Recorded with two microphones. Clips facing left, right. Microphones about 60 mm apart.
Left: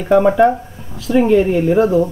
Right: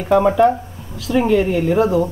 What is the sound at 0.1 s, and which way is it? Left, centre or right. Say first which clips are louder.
Speech: left 2 dB; centre.